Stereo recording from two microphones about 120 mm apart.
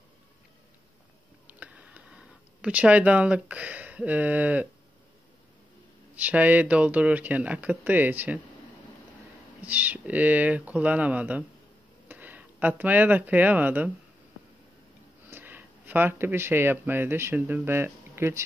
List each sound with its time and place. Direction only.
1.5 s a sound: 10° right (ahead or behind)
6.1 s speech: 15° right (ahead or behind)
9.6 s speech: 15° right (ahead or behind)
15.2 s speech: 15° right (ahead or behind)